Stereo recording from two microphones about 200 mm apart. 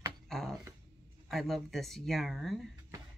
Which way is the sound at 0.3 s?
Centre (ahead or behind).